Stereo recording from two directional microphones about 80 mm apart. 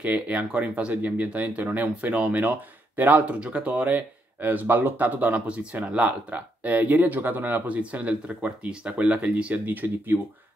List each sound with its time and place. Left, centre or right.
0.0 s speech: centre